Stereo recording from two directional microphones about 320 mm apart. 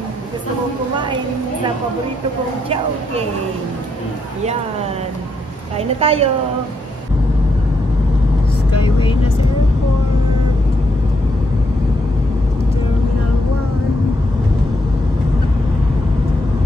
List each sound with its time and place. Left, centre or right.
0.9 s a woman's voice: centre
5.8 s a woman's voice: centre